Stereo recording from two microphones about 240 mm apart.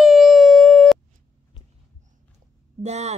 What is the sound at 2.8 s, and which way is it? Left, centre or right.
Speech, right.